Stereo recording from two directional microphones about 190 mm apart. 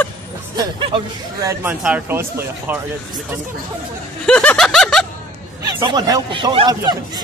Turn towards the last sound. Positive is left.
turn(degrees=-20)  # may be behind; listen again after turning